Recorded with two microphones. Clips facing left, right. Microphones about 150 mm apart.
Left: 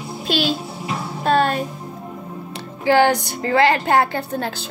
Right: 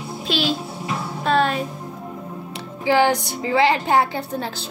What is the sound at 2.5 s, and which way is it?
A woman's voice, 60° left (ahead or behind).